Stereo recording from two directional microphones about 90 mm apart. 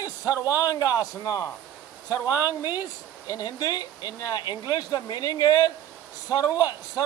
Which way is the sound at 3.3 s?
45° left (ahead or behind).